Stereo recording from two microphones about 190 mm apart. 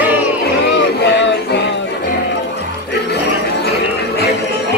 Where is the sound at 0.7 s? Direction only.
70° left (ahead or behind).